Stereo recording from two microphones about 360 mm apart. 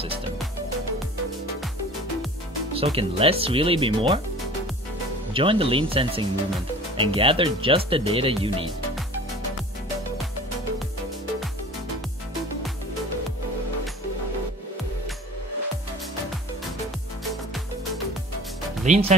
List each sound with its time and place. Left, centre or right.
2.7 s speech: centre
5.3 s speech: centre
18.9 s speech: centre